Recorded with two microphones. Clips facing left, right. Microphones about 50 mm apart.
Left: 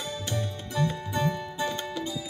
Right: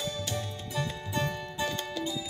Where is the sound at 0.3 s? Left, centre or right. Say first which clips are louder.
Left 3 dB; left.